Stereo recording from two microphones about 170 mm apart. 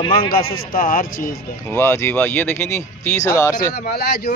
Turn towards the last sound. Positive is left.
turn(degrees=65)  # may be behind; listen again after turning